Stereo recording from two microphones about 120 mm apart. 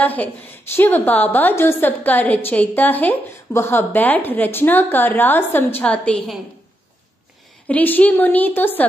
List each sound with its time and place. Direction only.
0.0 s a woman's voice: 15° left (ahead or behind)
7.6 s a woman's voice: 15° left (ahead or behind)